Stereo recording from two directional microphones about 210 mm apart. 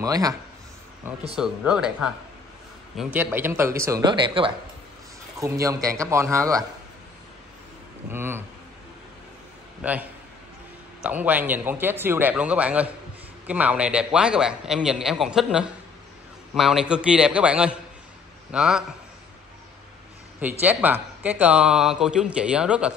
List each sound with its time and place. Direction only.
0.0 s speech: 15° right (ahead or behind)
1.3 s speech: 5° right (ahead or behind)
8.1 s speech: 10° right (ahead or behind)
9.8 s a man's voice: 5° right (ahead or behind)
20.6 s speech: 10° right (ahead or behind)